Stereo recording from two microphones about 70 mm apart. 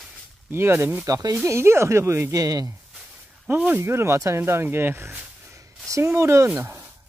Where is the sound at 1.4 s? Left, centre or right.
Right.